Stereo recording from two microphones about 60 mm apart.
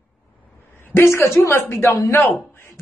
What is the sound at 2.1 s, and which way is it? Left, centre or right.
Speech, left.